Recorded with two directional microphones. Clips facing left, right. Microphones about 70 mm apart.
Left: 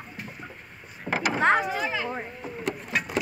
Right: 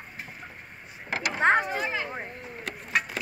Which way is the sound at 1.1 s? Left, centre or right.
Left.